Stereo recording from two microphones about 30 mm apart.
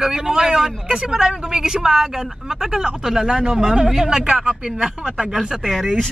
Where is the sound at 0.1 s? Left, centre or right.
Right.